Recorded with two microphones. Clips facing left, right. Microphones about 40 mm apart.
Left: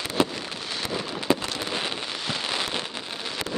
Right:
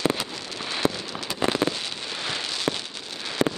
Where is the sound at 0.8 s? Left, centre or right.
Right.